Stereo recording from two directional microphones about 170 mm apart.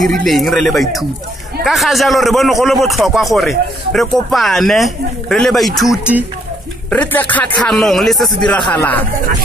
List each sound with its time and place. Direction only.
0.2 s speech: centre (ahead or behind)
6.9 s a man's voice: 10° left (ahead or behind)
8.7 s a man's voice: 10° left (ahead or behind)